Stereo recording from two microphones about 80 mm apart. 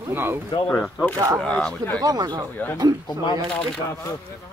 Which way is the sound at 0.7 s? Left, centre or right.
Centre.